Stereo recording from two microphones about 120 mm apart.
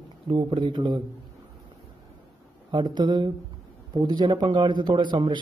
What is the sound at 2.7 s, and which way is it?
A man's voice, 40° right (ahead or behind).